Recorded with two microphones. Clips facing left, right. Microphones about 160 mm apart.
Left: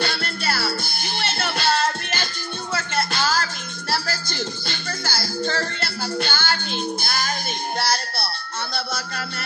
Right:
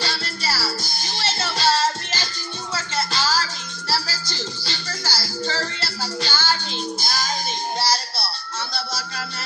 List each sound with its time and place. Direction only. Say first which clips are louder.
0.0 s music: left 2 dB; 55° left (ahead or behind)